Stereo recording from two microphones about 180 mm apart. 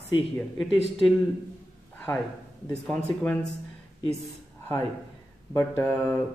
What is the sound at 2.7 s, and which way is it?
Speech, 10° left (ahead or behind).